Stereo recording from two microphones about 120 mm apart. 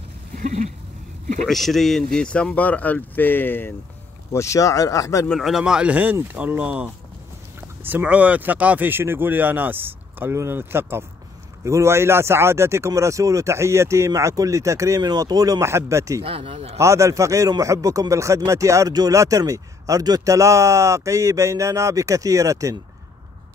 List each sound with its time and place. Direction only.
1.4 s speech: centre (ahead or behind); by 5.3 s 25° left (ahead or behind)
5.3 s speech: centre (ahead or behind); by 16.2 s 25° right (ahead or behind)
16.3 s speech: 55° right (ahead or behind)
16.7 s speech: 25° right (ahead or behind)